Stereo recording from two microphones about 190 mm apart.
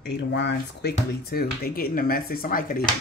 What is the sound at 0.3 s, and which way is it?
Speech, 65° left (ahead or behind).